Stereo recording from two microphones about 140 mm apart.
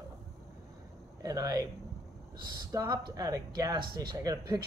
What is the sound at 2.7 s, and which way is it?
Speech, 30° right (ahead or behind).